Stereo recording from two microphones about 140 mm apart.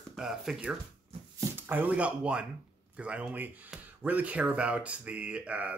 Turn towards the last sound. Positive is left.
turn(degrees=-10)  # may be behind; listen again after turning